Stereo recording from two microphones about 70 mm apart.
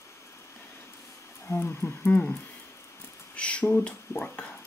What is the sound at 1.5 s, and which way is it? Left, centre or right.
Speech, left.